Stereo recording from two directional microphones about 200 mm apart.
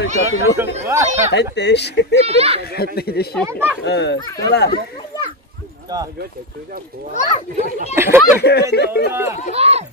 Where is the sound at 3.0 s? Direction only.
50° left (ahead or behind).